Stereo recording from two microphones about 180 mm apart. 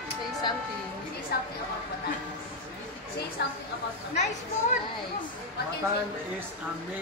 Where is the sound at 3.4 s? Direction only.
70° left (ahead or behind).